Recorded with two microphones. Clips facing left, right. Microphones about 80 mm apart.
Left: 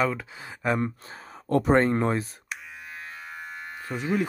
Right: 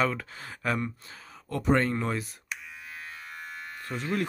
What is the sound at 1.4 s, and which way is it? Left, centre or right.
Speech, left.